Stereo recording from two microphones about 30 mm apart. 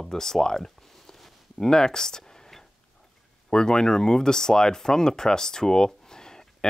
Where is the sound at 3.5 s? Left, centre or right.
Left.